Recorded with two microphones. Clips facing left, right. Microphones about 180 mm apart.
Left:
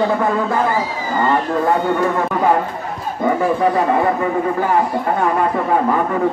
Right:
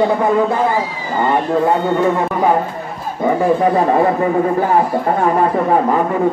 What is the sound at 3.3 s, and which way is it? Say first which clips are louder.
Speech: right 4 dB; 30° right (ahead or behind).